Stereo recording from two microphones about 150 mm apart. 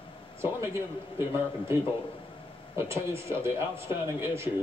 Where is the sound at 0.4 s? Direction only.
15° right (ahead or behind).